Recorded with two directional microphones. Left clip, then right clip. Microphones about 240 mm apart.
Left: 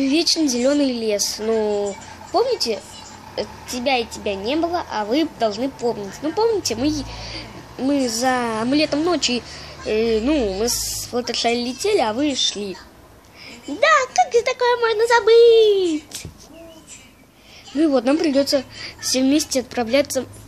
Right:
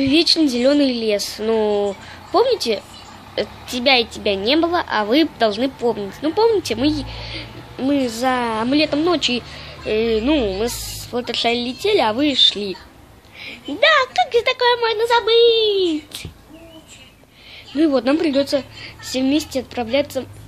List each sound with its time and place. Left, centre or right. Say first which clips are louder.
0.0 s a woman's voice: right 3 dB; centre
13.7 s a woman's voice: right 1 dB; centre
15.4 s a child's voice: left 2 dB; left
17.7 s a woman's voice: right 1 dB; centre